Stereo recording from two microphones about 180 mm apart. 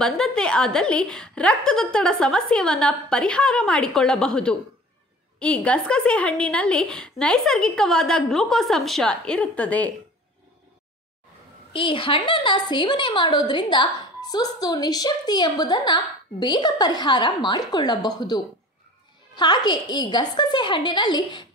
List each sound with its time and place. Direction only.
0.0 s a woman's voice: 5° left (ahead or behind)
11.7 s a woman's voice: 30° left (ahead or behind)